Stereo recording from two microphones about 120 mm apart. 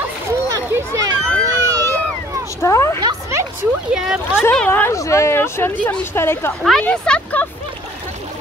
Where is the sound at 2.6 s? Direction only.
25° left (ahead or behind).